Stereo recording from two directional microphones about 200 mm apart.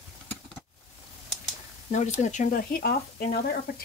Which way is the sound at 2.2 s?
35° left (ahead or behind).